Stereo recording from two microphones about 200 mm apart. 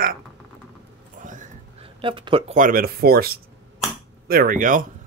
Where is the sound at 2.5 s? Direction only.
45° right (ahead or behind).